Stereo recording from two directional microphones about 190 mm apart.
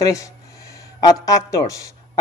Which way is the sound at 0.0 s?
15° left (ahead or behind).